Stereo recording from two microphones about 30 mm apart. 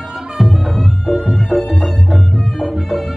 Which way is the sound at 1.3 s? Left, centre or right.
Centre.